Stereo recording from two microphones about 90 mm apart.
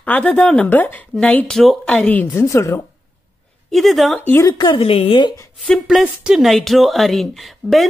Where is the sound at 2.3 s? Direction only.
35° left (ahead or behind).